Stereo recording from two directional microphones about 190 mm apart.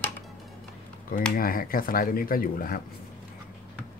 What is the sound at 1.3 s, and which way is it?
Speech, 50° left (ahead or behind).